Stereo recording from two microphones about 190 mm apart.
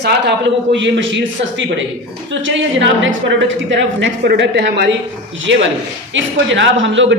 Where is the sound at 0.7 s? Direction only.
75° right (ahead or behind).